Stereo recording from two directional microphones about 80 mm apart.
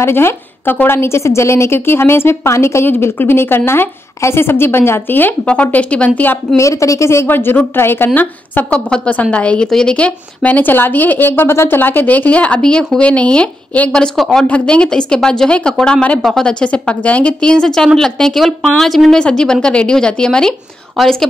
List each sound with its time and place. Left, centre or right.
0.0 s a woman's voice: left
6.5 s a woman's voice: left; by 21.3 s centre